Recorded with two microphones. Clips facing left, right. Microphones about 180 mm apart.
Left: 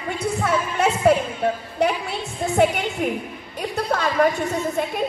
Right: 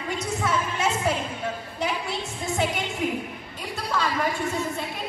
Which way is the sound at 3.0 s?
60° left (ahead or behind).